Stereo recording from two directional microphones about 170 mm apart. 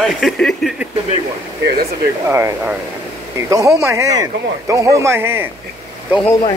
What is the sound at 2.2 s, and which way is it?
Speech, 15° right (ahead or behind).